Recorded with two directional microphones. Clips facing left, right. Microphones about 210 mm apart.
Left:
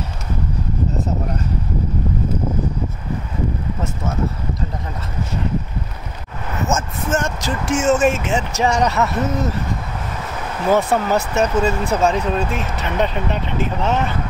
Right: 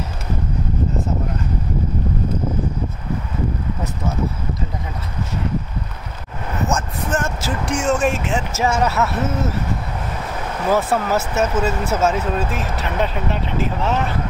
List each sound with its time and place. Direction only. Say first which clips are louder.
6.7 s speech: left 3 dB; centre (ahead or behind)
10.7 s speech: left 2 dB; 5° right (ahead or behind)